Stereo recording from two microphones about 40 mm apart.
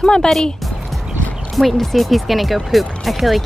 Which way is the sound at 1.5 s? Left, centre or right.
Centre.